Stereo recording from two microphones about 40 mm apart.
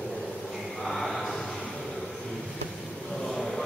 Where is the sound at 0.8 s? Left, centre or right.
Centre.